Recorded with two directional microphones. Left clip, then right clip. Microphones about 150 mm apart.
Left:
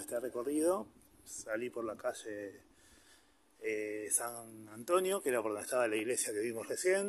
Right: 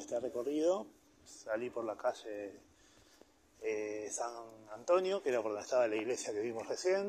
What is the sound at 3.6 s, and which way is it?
Speech, 40° left (ahead or behind).